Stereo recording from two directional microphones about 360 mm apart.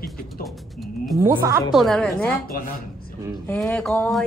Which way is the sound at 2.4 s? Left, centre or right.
Left.